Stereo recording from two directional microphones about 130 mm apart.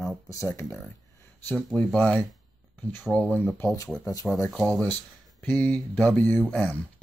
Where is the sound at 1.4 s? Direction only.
10° left (ahead or behind).